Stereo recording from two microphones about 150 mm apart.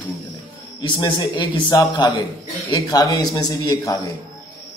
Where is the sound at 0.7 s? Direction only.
30° left (ahead or behind).